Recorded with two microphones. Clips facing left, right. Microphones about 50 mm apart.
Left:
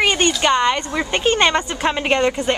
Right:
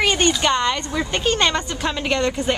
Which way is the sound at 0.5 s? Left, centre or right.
Centre.